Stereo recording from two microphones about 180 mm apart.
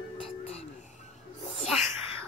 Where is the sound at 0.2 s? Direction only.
35° left (ahead or behind).